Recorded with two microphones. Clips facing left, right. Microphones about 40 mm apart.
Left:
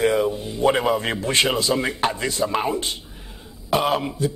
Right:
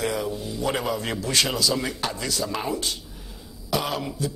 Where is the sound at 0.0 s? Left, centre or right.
Left.